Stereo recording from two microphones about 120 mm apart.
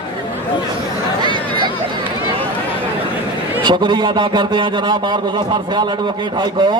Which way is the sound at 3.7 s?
40° right (ahead or behind).